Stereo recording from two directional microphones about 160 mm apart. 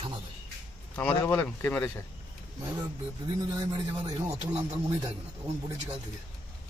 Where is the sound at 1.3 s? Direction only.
10° left (ahead or behind).